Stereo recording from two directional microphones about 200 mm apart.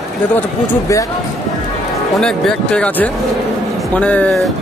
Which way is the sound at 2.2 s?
5° left (ahead or behind).